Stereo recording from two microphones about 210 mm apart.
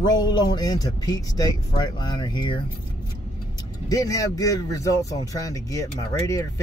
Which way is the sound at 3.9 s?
15° left (ahead or behind).